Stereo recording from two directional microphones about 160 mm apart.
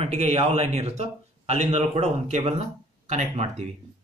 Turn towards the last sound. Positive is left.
turn(degrees=-45)  # may be behind; listen again after turning